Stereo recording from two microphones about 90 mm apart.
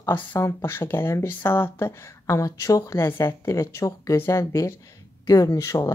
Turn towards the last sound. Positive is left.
turn(degrees=35)  # may be behind; listen again after turning